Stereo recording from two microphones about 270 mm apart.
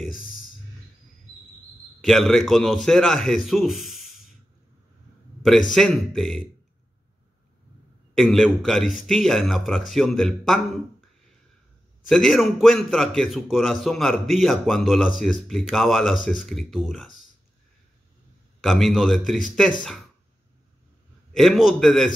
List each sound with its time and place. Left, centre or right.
0.0 s a sound: centre
2.0 s a man's voice: centre
5.8 s a man's voice: centre
8.1 s a man's voice: centre
12.1 s a man's voice: centre
18.6 s a man's voice: centre
21.3 s a man's voice: centre